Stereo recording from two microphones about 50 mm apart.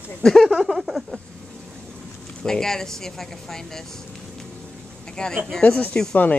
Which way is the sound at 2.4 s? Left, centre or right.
Centre.